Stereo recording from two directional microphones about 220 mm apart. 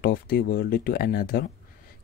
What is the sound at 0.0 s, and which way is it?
Speech, 45° left (ahead or behind).